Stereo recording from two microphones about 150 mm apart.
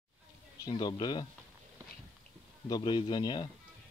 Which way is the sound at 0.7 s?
30° left (ahead or behind).